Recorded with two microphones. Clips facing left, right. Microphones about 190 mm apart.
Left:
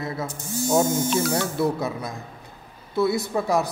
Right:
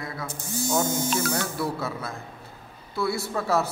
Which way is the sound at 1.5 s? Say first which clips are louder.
Left 5 dB; 20° left (ahead or behind).